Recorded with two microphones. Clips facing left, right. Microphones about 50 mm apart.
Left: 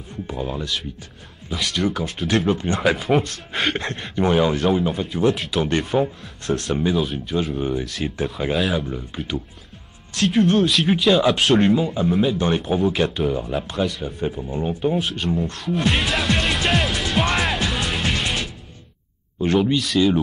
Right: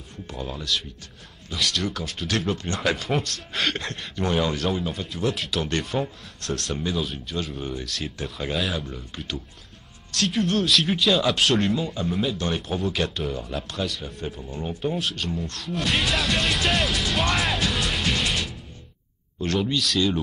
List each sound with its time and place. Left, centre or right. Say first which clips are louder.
0.3 s speech: left 6 dB; centre
0.6 s speech: left 2 dB; centre
4.2 s speech: left 6 dB; centre
7.0 s speech: left 6 dB; centre
7.5 s speech: left 8 dB; centre
7.8 s speech: left 6 dB; centre
10.1 s speech: left 6 dB; centre
11.7 s speech: left 7 dB; centre
12.1 s speech: left 6 dB; centre
12.7 s speech: left 6 dB; centre
13.8 s speech: left 6 dB; centre
14.2 s speech: left 8 dB; centre
15.5 s music: left 4 dB; centre
19.4 s speech: left 5 dB; centre